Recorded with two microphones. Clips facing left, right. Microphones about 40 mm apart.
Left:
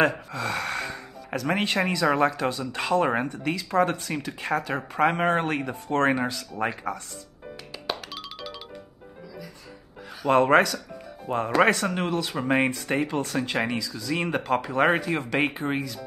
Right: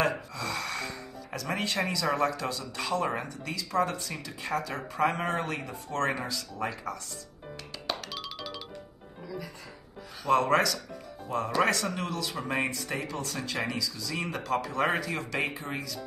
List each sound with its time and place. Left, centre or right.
0.3 s speech: left
7.8 s music: centre
10.3 s speech: left
15.4 s speech: left